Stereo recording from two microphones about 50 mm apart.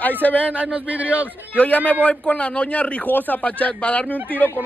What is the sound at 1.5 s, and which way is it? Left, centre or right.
Speech, left.